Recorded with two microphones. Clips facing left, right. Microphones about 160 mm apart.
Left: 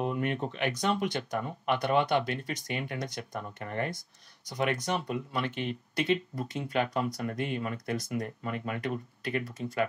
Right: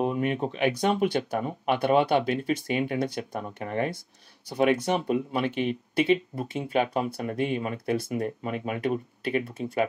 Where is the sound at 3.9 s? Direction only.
60° right (ahead or behind).